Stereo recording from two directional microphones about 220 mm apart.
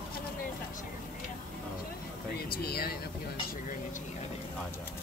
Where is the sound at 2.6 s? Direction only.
45° left (ahead or behind).